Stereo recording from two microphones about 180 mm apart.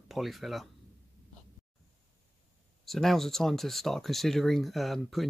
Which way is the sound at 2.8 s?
Centre (ahead or behind).